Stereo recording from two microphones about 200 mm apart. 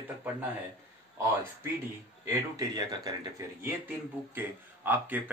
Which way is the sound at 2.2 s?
20° right (ahead or behind).